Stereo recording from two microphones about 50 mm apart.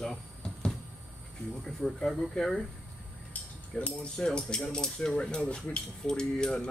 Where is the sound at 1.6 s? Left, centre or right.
Centre.